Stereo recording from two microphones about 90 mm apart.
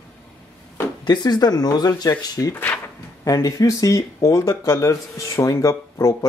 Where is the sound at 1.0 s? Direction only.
55° left (ahead or behind).